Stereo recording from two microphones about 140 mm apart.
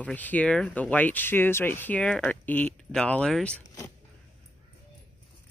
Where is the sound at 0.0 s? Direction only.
10° left (ahead or behind).